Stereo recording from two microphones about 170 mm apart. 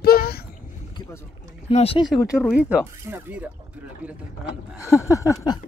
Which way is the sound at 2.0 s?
5° right (ahead or behind).